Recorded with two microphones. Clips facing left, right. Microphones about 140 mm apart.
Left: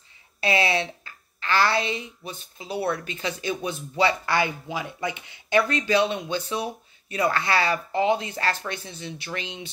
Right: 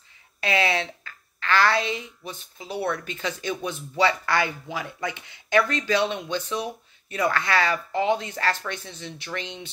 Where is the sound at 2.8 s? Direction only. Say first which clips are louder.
Even; 30° left (ahead or behind).